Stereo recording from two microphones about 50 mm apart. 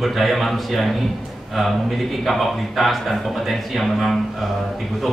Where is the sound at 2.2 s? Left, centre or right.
Centre.